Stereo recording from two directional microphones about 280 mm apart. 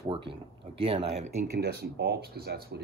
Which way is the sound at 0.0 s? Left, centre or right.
Centre.